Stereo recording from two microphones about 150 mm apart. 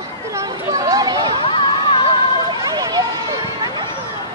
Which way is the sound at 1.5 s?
35° left (ahead or behind).